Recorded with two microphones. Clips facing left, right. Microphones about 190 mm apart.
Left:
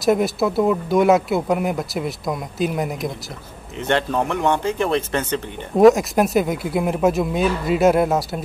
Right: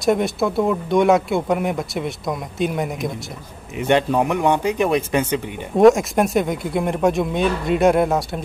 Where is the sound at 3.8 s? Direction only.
15° right (ahead or behind).